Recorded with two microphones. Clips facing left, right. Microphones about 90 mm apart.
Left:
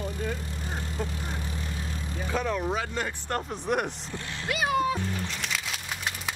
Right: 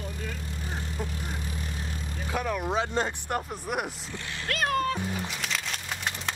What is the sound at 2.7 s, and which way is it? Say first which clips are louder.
Speech: right 3 dB; 25° right (ahead or behind).